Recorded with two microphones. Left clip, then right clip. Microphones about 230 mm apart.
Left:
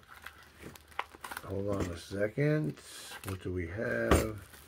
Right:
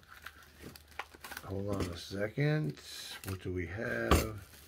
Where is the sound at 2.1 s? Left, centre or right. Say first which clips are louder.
Left 4 dB; centre.